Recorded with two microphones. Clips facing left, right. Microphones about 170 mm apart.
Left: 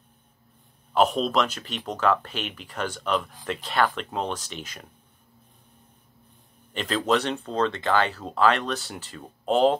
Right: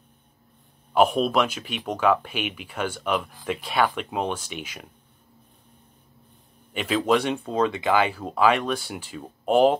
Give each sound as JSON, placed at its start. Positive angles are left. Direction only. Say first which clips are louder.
{"t": 0.9, "sound": "speech", "louder": "right 2 dB", "side_deg": -10}
{"t": 6.7, "sound": "speech", "louder": "right 2 dB", "side_deg": -10}